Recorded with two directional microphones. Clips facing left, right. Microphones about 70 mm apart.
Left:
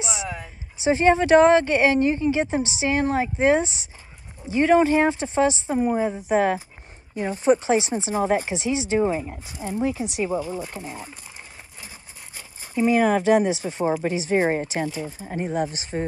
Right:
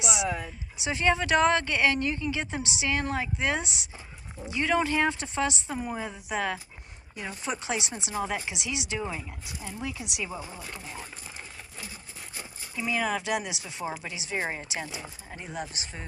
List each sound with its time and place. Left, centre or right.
0.8 s speech: left
10.8 s speech: centre
12.7 s speech: left